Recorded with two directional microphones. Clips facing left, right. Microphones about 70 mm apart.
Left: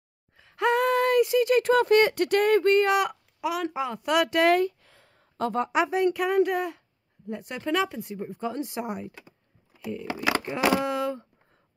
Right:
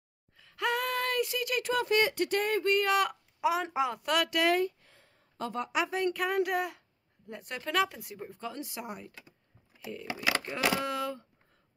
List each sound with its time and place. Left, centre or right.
0.4 s gasp: left
1.6 s speech: left
3.3 s speech: right
4.0 s speech: centre
4.5 s a sound: left
5.4 s speech: left
5.7 s speech: left
5.9 s speech: centre
8.4 s speech: left
9.8 s speech: centre
10.3 s a sound: centre
10.8 s speech: left